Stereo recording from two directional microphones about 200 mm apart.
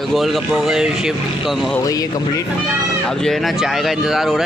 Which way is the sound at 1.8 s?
20° left (ahead or behind).